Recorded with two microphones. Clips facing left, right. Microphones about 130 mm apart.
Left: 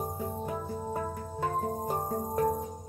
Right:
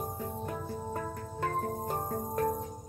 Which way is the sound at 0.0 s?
10° left (ahead or behind).